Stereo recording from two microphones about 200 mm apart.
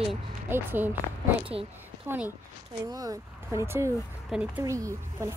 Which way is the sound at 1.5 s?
25° right (ahead or behind).